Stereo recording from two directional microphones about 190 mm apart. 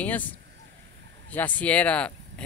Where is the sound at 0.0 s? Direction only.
10° left (ahead or behind).